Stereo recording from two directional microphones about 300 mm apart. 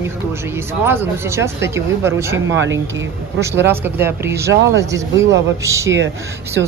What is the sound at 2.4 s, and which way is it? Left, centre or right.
Speech, right.